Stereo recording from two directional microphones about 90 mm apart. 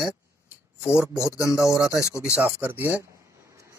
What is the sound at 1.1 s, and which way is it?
Speech, 35° left (ahead or behind).